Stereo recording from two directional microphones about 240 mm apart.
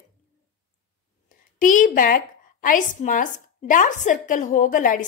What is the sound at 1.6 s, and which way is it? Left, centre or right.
A woman's voice, left.